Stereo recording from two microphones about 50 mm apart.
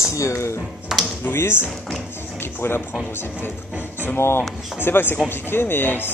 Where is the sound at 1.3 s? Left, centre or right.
Left.